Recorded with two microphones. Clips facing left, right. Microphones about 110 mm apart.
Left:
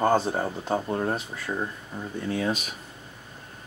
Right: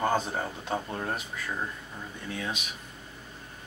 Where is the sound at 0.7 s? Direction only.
25° left (ahead or behind).